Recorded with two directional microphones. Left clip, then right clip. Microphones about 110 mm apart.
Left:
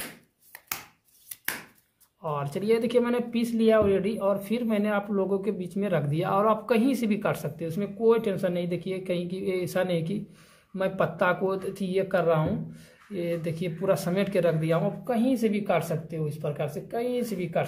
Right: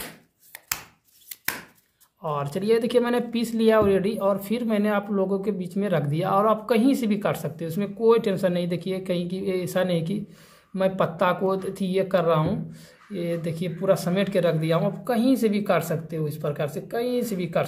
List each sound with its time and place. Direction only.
2.2 s speech: 5° right (ahead or behind)
13.1 s speech: 5° right (ahead or behind); by 17.6 s 20° right (ahead or behind)